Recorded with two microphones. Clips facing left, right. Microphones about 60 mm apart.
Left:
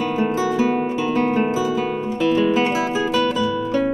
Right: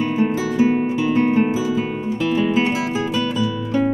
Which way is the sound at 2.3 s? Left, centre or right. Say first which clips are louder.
Even; centre.